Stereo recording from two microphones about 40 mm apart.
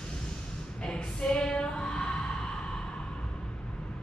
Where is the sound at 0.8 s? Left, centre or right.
Centre.